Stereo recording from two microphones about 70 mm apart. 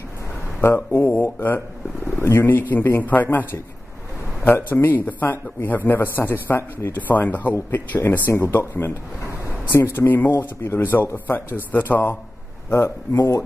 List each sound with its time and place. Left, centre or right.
0.6 s a man's voice: left
4.5 s a man's voice: left